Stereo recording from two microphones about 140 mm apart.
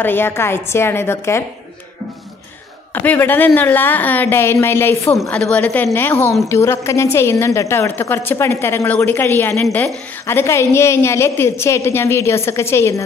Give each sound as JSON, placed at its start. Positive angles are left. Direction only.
{"t": 0.0, "sound": "a woman's voice", "side_deg": 15}
{"t": 2.9, "sound": "a woman's voice", "side_deg": 15}
{"t": 5.3, "sound": "a woman's voice", "side_deg": 10}